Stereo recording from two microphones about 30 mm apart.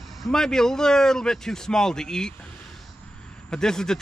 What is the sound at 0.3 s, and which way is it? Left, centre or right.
Speech, centre.